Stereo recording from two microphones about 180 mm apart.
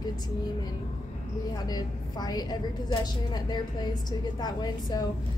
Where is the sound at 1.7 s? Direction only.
20° left (ahead or behind).